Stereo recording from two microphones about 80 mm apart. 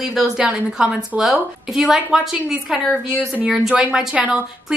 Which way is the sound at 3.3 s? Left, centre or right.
Centre.